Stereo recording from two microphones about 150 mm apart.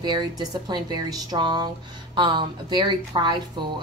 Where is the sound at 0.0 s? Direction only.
30° right (ahead or behind).